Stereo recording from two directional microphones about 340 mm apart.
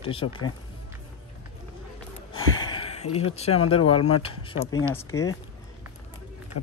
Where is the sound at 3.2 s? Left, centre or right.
Centre.